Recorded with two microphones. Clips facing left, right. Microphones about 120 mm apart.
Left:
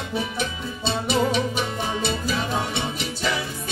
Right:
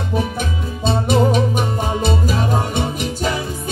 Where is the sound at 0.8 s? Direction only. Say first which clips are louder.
Right 6 dB; 45° right (ahead or behind).